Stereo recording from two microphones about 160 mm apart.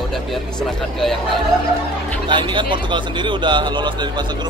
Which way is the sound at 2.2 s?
30° right (ahead or behind).